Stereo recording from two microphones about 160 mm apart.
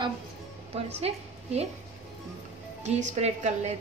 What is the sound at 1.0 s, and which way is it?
Speech, 40° right (ahead or behind).